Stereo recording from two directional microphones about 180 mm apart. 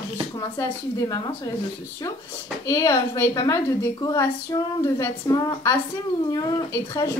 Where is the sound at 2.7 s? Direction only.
20° left (ahead or behind).